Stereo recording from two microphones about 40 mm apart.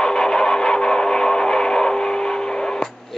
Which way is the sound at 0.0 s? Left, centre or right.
Centre.